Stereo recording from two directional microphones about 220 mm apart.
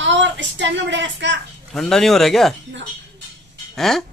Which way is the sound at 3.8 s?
Centre (ahead or behind).